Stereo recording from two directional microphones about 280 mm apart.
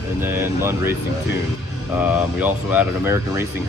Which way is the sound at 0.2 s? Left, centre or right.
Centre.